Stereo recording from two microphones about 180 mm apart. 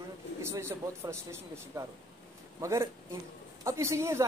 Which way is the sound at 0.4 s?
15° right (ahead or behind).